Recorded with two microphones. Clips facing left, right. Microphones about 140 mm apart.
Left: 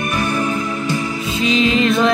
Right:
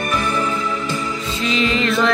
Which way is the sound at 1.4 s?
15° left (ahead or behind).